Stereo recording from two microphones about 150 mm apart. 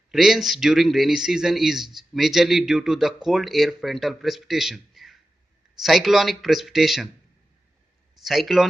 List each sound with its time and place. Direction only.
0.1 s speech: centre (ahead or behind)
8.2 s speech: centre (ahead or behind)